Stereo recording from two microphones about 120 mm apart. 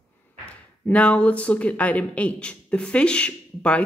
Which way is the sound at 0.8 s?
10° left (ahead or behind).